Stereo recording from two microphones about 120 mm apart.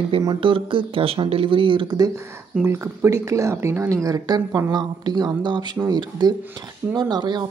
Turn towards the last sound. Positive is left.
turn(degrees=-35)  # may be behind; listen again after turning